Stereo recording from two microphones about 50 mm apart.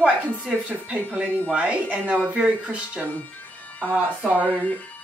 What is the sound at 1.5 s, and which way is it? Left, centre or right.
Speech, right.